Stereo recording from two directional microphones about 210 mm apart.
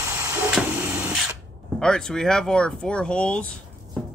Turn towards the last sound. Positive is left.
turn(degrees=5)  # may be behind; listen again after turning